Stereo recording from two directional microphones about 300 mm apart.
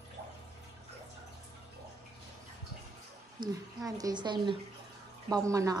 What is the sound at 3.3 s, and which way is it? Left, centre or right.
A woman's voice, centre.